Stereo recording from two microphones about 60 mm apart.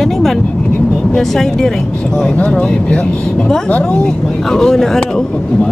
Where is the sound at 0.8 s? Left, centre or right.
Left.